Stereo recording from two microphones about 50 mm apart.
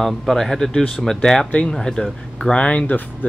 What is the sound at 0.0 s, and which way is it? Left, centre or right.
Speech, centre.